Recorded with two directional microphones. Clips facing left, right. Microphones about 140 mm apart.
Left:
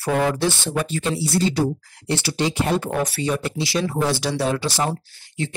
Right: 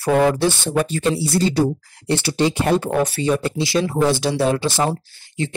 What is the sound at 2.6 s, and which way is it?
Speech, 40° right (ahead or behind).